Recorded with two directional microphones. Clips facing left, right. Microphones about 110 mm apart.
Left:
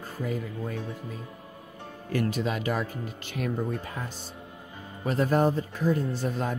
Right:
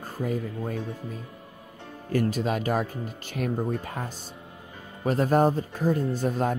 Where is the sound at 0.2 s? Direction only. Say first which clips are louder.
Right 3 dB; 45° right (ahead or behind).